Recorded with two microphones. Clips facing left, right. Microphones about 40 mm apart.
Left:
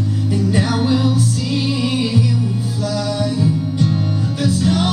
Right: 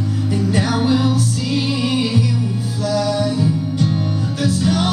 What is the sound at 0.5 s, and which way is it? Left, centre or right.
Music, centre.